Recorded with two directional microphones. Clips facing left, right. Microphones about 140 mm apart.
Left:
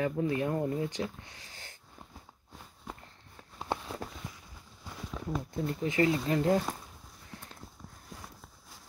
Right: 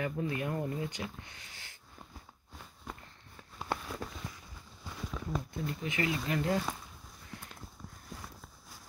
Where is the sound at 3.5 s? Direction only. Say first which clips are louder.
Left 2 dB; 25° left (ahead or behind).